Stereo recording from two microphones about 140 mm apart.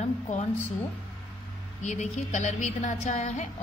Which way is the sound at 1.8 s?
55° left (ahead or behind).